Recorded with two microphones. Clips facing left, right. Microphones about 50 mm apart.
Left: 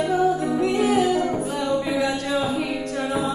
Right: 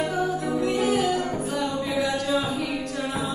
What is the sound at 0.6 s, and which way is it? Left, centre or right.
Music, left.